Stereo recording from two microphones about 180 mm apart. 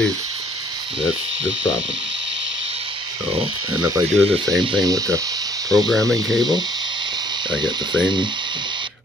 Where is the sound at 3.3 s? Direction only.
30° right (ahead or behind).